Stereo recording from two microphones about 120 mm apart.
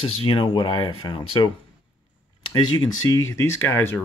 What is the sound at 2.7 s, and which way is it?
Speech, 30° left (ahead or behind).